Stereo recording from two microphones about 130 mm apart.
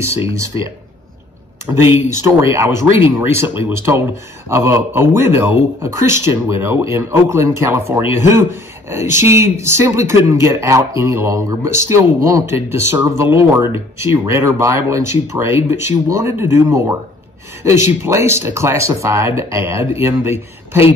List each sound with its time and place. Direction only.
0.3 s a man's voice: 25° right (ahead or behind)
1.7 s a man's voice: 20° right (ahead or behind)